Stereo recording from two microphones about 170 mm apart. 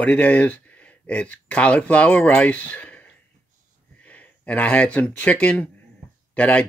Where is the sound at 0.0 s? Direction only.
10° left (ahead or behind).